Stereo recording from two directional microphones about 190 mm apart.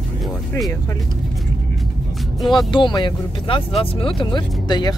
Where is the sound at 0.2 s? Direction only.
Centre (ahead or behind).